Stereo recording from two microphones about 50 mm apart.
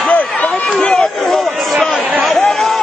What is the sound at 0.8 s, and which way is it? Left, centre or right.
Run, centre.